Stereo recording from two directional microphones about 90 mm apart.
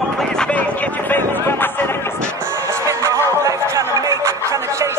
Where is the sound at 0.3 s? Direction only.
10° left (ahead or behind).